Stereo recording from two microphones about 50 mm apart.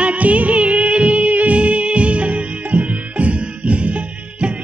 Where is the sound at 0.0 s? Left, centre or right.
Right.